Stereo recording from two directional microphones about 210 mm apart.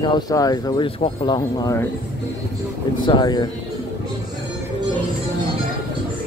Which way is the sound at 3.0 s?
20° left (ahead or behind).